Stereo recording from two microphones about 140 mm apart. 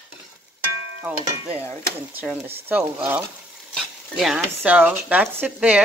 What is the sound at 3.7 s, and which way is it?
Speech, centre (ahead or behind).